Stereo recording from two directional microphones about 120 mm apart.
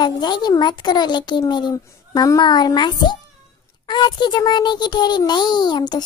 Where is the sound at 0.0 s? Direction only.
35° left (ahead or behind).